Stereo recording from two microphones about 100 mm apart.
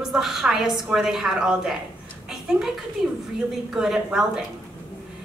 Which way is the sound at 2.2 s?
5° right (ahead or behind).